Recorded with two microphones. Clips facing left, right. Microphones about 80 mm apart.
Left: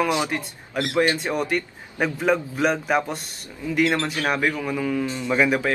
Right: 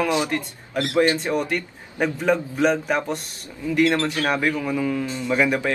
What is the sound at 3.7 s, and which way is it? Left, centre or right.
A man's voice, centre.